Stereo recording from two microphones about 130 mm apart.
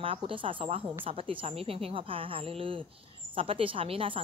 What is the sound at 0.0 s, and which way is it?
A woman's voice, 40° right (ahead or behind).